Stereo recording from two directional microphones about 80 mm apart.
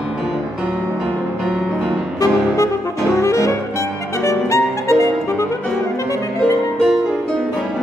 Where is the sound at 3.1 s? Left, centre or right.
Left.